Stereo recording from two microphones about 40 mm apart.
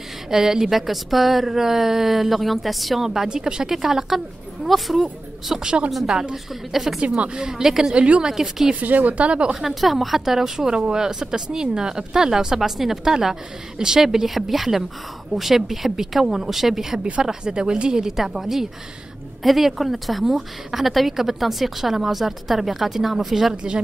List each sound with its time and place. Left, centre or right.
0.3 s a woman's voice: centre
3.3 s a woman's voice: right; by 5.0 s centre
5.5 s a woman's voice: centre
6.3 s a woman's voice: centre
7.3 s speech: centre
7.9 s a woman's voice: right
8.3 s speech: centre
8.7 s speech: right
9.6 s a woman's voice: centre
18.1 s a woman's voice: centre
23.5 s a woman's voice: right